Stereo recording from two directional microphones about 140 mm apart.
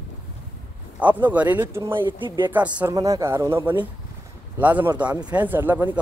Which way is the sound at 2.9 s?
25° right (ahead or behind).